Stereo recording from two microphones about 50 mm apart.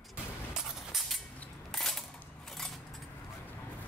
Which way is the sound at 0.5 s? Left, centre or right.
Centre.